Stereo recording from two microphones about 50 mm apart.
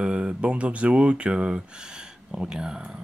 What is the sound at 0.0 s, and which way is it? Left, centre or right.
Speech, right.